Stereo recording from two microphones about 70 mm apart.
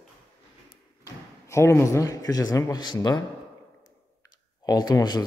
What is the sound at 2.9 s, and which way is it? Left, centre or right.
Speech, left.